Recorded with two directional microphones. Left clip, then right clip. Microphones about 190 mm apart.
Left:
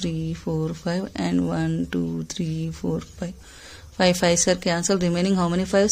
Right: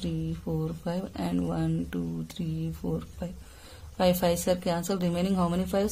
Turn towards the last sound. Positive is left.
turn(degrees=25)  # may be behind; listen again after turning